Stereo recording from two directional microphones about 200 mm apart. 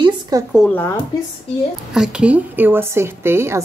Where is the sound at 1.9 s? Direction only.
5° right (ahead or behind).